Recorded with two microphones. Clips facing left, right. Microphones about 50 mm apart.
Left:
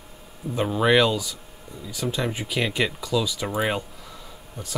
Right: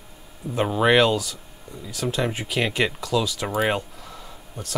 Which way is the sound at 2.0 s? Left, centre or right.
Centre.